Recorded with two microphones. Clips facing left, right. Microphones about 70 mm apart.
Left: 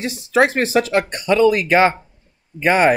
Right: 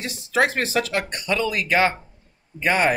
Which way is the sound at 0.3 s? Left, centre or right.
Left.